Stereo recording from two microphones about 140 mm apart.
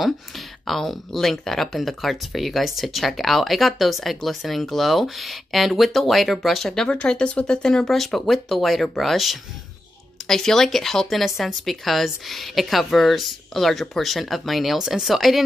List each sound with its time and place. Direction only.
0.7 s speech: centre (ahead or behind)